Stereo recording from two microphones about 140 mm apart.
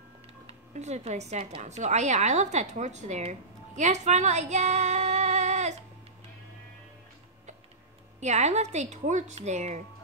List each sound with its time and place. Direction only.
0.5 s speech: 55° right (ahead or behind)
8.2 s speech: 50° right (ahead or behind)